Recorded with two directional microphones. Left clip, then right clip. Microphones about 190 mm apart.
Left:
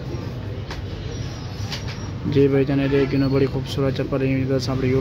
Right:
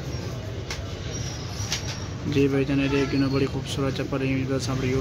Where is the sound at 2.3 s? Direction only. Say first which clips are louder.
Left 5 dB; 20° left (ahead or behind).